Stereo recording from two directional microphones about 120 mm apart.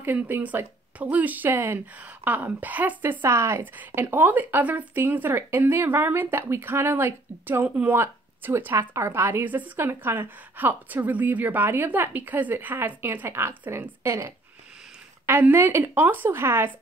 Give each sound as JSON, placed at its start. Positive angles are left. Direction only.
{"t": 0.0, "sound": "a woman's voice", "side_deg": -15}